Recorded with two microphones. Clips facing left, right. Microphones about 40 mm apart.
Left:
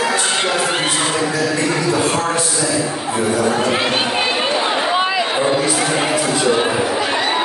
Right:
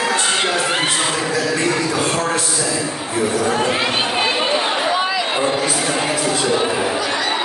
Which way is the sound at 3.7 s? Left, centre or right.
Centre.